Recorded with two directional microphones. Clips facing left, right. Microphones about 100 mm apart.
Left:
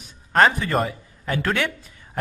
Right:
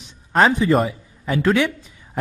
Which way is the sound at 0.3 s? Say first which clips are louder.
Right 3 dB; centre (ahead or behind).